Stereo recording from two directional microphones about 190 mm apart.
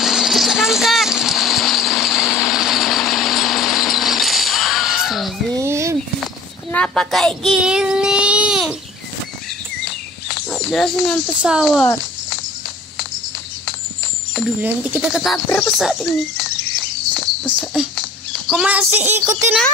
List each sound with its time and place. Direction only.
0.0 s a sound: centre (ahead or behind)
5.5 s a sound: 15° right (ahead or behind)
6.2 s child singing: 5° left (ahead or behind)
10.2 s speech: centre (ahead or behind)
14.3 s speech: 5° right (ahead or behind)
17.1 s cricket: 5° left (ahead or behind)
18.5 s speech: 5° right (ahead or behind)